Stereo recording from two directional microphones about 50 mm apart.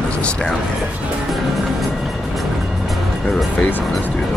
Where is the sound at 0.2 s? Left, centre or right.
Left.